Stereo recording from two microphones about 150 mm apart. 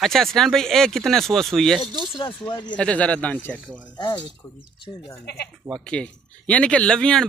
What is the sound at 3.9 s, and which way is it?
Speech, 30° left (ahead or behind).